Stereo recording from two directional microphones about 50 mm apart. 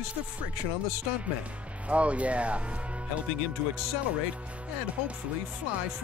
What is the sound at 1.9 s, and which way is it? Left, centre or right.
Speech, right.